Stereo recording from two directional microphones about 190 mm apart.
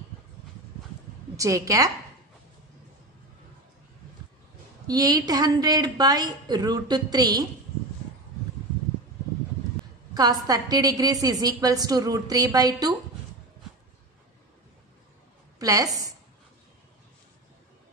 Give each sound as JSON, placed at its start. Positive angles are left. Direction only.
{"t": 1.3, "sound": "a woman's voice", "side_deg": -15}
{"t": 4.8, "sound": "a woman's voice", "side_deg": -20}
{"t": 10.1, "sound": "a woman's voice", "side_deg": -20}
{"t": 15.6, "sound": "a woman's voice", "side_deg": -20}